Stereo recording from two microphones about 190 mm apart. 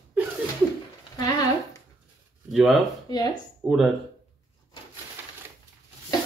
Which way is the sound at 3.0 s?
20° left (ahead or behind).